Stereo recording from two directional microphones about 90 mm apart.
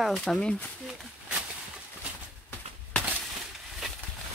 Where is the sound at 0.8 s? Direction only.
15° right (ahead or behind).